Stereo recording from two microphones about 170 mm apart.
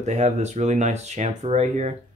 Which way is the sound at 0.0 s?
40° right (ahead or behind).